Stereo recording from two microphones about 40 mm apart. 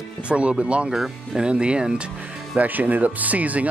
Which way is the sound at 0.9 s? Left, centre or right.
Centre.